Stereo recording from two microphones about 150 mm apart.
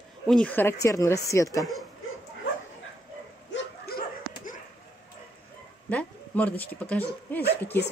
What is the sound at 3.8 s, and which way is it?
Dog, 80° left.